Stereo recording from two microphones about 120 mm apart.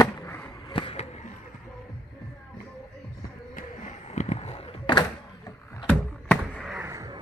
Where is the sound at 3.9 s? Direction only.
70° left (ahead or behind).